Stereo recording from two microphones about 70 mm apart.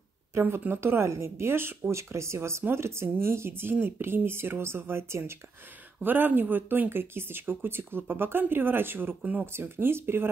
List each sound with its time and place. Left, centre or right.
0.3 s speech: right
6.0 s speech: right
9.5 s speech: right